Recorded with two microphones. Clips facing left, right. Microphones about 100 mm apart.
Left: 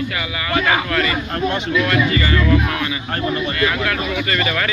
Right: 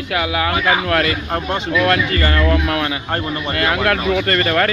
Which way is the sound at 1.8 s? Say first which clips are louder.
Right 3 dB; 60° right (ahead or behind).